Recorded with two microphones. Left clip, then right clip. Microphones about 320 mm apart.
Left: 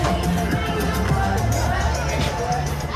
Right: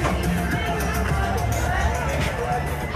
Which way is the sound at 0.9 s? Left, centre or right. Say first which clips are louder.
Left 2 dB; left.